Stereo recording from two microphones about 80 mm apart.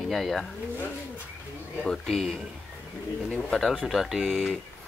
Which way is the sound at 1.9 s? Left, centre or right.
Centre.